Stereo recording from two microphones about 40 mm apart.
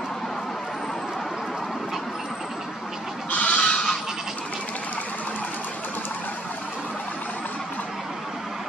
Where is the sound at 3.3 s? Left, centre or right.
Left.